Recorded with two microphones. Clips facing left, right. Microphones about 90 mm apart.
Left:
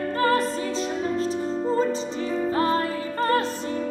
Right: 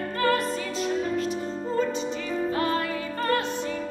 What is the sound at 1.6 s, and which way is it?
Music, 30° left (ahead or behind).